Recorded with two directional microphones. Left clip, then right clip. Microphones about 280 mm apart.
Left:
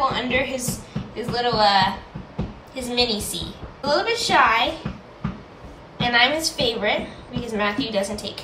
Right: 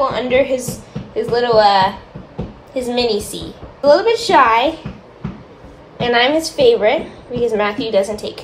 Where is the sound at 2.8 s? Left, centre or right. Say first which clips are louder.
Right 4 dB; centre.